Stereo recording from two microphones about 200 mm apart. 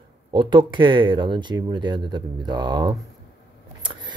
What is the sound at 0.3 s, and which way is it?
Speech, 25° right (ahead or behind).